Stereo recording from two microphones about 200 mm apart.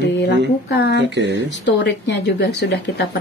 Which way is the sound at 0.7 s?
60° left (ahead or behind).